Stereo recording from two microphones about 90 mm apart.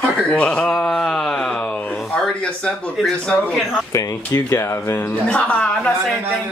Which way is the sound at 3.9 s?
35° left (ahead or behind).